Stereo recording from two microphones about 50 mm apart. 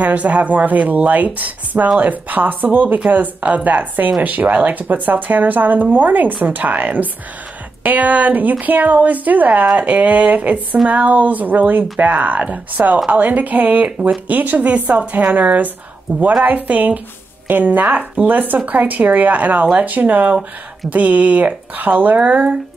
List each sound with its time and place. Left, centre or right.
0.0 s speech: right